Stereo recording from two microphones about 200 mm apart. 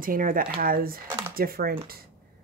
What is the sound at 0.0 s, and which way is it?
Speech, 45° right (ahead or behind).